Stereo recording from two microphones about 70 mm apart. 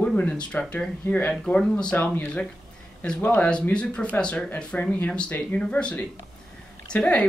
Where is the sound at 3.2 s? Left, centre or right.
Left.